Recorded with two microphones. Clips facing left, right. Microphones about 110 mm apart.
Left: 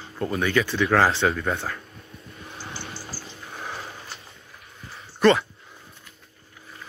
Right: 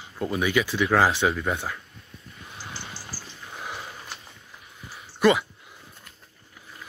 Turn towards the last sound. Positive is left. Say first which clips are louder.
# left 2 dB
turn(degrees=-10)  # may be behind; listen again after turning